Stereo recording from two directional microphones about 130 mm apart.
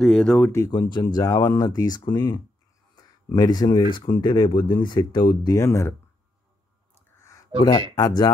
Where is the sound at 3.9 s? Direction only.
35° left (ahead or behind).